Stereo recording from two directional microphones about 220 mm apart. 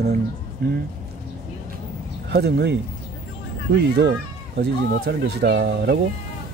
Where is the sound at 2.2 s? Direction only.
45° right (ahead or behind).